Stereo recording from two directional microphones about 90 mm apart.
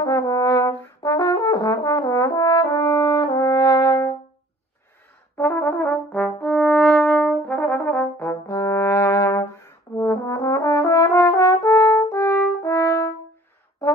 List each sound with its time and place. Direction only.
0.0 s brass instrument: 40° left (ahead or behind)
5.4 s brass instrument: 25° left (ahead or behind)